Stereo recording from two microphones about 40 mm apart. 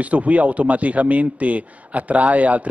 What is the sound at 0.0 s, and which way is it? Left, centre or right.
Speech, right.